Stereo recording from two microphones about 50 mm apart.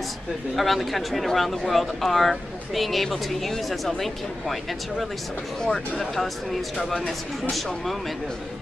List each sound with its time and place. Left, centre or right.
0.6 s speech: centre